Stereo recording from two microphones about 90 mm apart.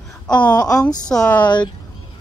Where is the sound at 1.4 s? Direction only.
55° left (ahead or behind).